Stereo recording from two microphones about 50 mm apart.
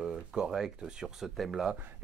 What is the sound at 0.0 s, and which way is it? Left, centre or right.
Speech, centre.